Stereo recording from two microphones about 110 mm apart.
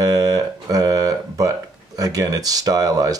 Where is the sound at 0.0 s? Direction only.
35° right (ahead or behind).